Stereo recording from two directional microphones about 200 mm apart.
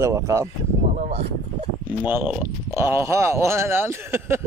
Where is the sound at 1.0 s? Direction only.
30° right (ahead or behind).